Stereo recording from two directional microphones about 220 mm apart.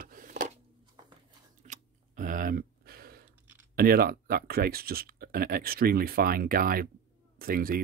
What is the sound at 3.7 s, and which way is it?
Speech, 45° right (ahead or behind).